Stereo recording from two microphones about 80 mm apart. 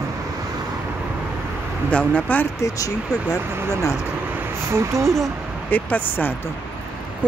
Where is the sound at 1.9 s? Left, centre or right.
Centre.